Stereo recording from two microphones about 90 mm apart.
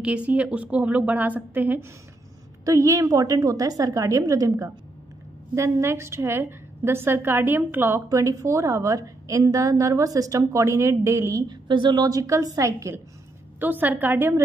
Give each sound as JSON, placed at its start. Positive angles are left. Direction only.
{"t": 0.0, "sound": "a woman's voice", "side_deg": -15}
{"t": 2.6, "sound": "a woman's voice", "side_deg": -40}
{"t": 8.1, "sound": "a woman's voice", "side_deg": -35}
{"t": 11.4, "sound": "a woman's voice", "side_deg": -60}
{"t": 13.6, "sound": "a woman's voice", "side_deg": -20}